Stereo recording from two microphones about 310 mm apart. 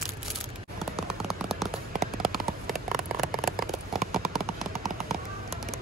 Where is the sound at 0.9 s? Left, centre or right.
Centre.